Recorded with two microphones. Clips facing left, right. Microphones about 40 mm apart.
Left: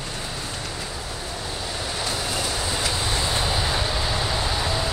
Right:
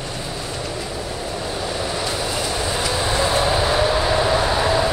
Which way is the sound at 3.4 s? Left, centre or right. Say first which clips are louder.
Right 7 dB; right.